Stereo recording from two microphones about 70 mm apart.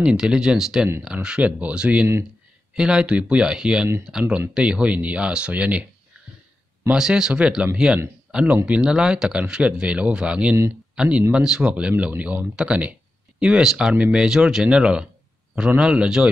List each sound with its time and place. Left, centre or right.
0.0 s speech: centre
6.9 s speech: centre